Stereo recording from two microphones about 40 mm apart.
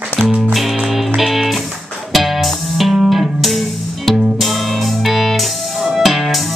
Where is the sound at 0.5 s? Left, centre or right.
Centre.